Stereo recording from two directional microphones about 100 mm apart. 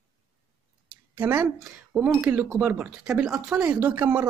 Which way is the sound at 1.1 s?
20° right (ahead or behind).